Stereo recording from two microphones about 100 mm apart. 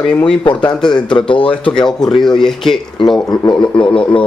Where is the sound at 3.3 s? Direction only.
50° left (ahead or behind).